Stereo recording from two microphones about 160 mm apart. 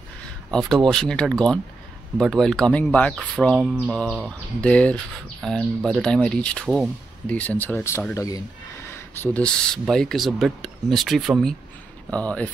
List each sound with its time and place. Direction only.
0.5 s speech: centre (ahead or behind)
3.5 s a sound: 10° right (ahead or behind)
3.9 s speech: centre (ahead or behind)